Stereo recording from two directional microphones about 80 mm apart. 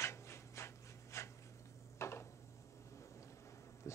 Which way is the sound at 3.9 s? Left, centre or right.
Left.